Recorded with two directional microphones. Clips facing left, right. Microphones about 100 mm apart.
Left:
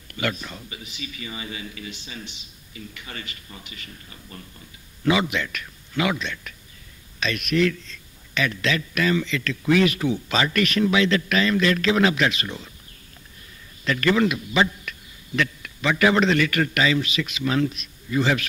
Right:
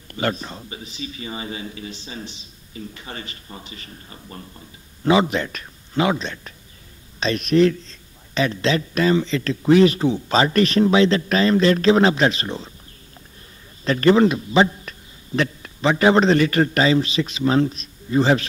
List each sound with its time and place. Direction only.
0.1 s speech: 35° right (ahead or behind)
13.8 s a man's voice: 35° right (ahead or behind)